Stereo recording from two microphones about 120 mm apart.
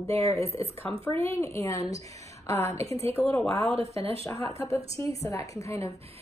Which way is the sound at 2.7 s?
60° right (ahead or behind).